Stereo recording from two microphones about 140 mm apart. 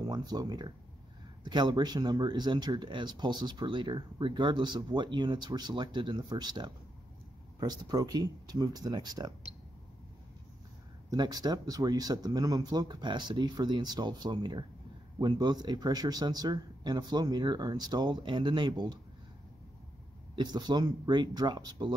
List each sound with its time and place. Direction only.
0.0 s speech: 30° right (ahead or behind)
11.1 s speech: 25° right (ahead or behind)
20.3 s speech: 30° right (ahead or behind)